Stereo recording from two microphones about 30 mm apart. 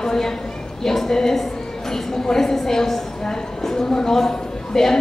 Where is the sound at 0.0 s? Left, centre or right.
Centre.